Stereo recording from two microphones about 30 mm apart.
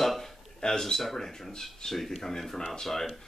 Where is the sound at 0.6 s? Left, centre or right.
Centre.